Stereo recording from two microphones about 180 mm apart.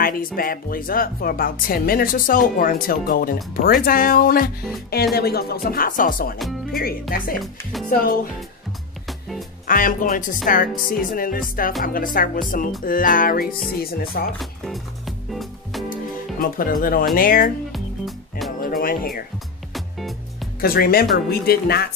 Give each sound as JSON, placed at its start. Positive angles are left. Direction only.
{"t": 0.4, "sound": "speech", "side_deg": 50}
{"t": 5.1, "sound": "music", "side_deg": 60}
{"t": 6.7, "sound": "speech", "side_deg": 55}
{"t": 9.7, "sound": "speech", "side_deg": 50}
{"t": 14.4, "sound": "music", "side_deg": 0}
{"t": 16.3, "sound": "speech", "side_deg": 55}
{"t": 17.7, "sound": "music", "side_deg": 0}
{"t": 18.6, "sound": "music", "side_deg": 55}
{"t": 19.7, "sound": "music", "side_deg": 0}
{"t": 20.6, "sound": "music", "side_deg": 55}